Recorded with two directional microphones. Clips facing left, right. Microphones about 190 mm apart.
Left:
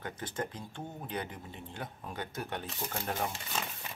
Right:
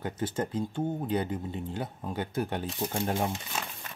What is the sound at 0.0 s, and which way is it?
Speech, 30° right (ahead or behind).